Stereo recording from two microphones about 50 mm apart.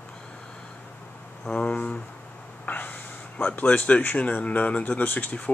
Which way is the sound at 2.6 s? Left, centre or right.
Left.